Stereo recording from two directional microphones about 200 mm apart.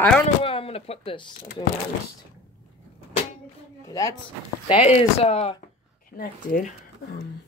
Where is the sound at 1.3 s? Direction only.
50° left (ahead or behind).